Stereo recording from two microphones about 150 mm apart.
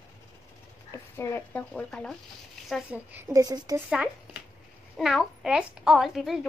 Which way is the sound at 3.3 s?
25° right (ahead or behind).